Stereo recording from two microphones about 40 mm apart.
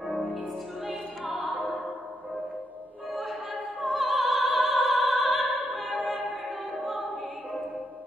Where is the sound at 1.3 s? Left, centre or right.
Right.